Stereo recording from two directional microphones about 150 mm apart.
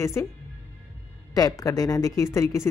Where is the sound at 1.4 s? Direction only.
25° left (ahead or behind).